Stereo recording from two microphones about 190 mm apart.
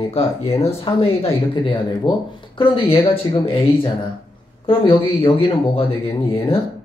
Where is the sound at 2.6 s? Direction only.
30° left (ahead or behind).